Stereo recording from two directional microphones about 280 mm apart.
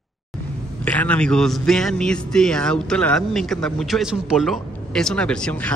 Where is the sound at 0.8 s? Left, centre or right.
Centre.